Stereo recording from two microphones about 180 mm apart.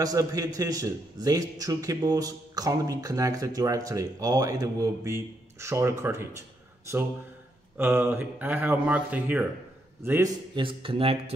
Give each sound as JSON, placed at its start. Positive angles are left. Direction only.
{"t": 0.0, "sound": "a man's voice", "side_deg": -20}
{"t": 7.7, "sound": "speech", "side_deg": -10}
{"t": 10.5, "sound": "a man's voice", "side_deg": -30}